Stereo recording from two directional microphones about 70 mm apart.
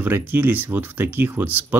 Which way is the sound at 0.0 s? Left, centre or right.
Right.